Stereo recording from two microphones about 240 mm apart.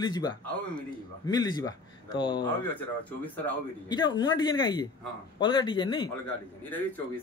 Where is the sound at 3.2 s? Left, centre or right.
Centre.